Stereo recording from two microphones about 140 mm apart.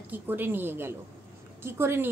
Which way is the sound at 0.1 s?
15° right (ahead or behind).